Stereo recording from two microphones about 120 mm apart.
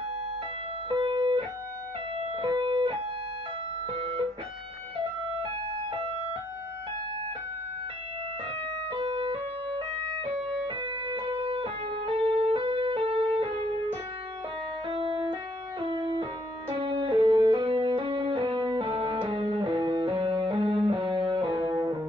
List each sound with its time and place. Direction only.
0.8 s music: 45° right (ahead or behind)
4.0 s music: 50° right (ahead or behind)
8.9 s music: 40° right (ahead or behind)
14.9 s music: 45° right (ahead or behind)